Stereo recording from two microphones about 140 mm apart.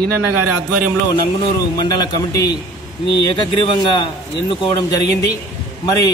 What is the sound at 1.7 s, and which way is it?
Speech, 30° left (ahead or behind).